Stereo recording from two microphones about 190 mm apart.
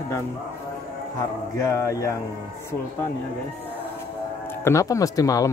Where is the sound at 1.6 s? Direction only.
15° left (ahead or behind).